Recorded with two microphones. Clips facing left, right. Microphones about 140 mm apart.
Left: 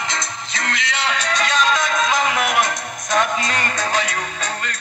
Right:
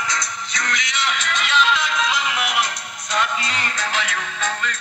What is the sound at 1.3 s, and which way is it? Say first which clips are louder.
Music: left 1 dB; 40° left (ahead or behind).